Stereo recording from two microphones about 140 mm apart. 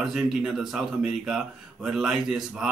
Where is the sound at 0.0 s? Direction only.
5° right (ahead or behind).